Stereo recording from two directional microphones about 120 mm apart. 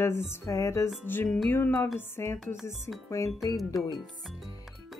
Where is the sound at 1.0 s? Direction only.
15° left (ahead or behind).